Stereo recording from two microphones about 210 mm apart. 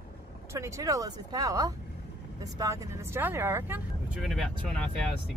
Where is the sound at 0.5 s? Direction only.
15° right (ahead or behind).